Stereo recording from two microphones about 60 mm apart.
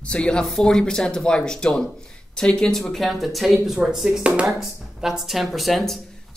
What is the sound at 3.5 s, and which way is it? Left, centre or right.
Speech, centre.